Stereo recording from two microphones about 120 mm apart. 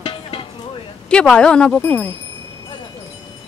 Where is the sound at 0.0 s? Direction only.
45° left (ahead or behind).